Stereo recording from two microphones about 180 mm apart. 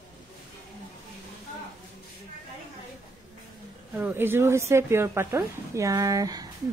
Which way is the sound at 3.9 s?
10° right (ahead or behind).